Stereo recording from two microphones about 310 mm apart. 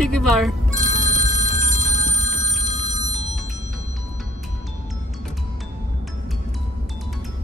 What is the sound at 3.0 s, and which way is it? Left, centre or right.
Music, left.